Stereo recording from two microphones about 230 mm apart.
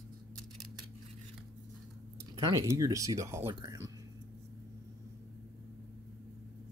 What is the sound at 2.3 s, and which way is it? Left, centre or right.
Speech, centre.